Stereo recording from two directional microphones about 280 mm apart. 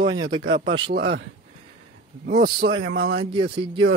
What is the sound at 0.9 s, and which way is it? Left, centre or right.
Speech, right.